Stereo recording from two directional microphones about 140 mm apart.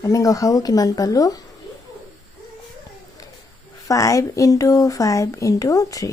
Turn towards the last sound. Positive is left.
turn(degrees=25)  # may be behind; listen again after turning